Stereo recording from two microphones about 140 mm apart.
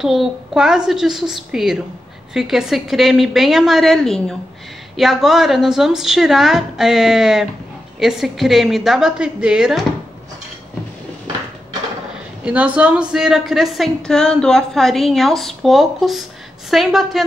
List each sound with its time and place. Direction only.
0.0 s a woman's voice: centre (ahead or behind)
12.4 s a woman's voice: 10° right (ahead or behind)